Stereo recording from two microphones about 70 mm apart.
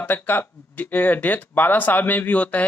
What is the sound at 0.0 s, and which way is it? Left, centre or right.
Speech, left.